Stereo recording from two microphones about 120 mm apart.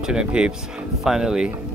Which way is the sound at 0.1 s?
10° right (ahead or behind).